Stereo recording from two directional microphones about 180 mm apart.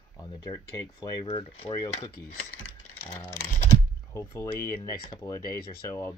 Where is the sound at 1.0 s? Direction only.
25° left (ahead or behind).